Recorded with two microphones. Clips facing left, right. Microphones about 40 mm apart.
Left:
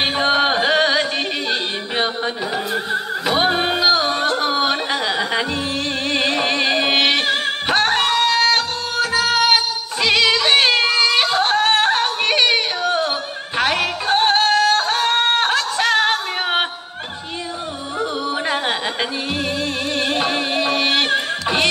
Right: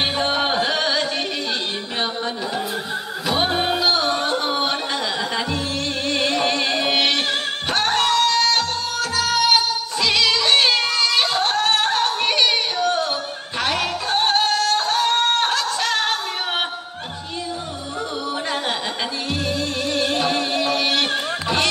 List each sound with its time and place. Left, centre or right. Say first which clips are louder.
0.0 s music: left 4 dB; centre
4.4 s yodeling: left 3 dB; centre
6.0 s music: left 1 dB; centre
13.6 s yodeling: left 3 dB; centre
18.3 s a sound: left 2 dB; centre
19.4 s music: left 1 dB; centre